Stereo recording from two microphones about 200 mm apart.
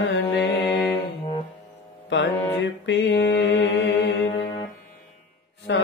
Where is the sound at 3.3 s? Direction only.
60° left (ahead or behind).